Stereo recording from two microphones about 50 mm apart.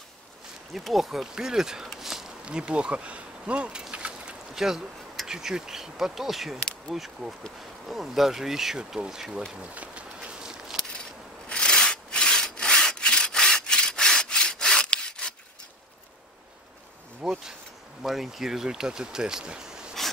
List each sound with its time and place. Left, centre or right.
0.7 s speech: centre
2.0 s a sound: centre
2.4 s speech: right
3.9 s a sound: right
4.6 s speech: centre
9.6 s walk: right
11.4 s wood: centre
14.9 s sawing: centre
17.2 s bee: centre
18.0 s speech: centre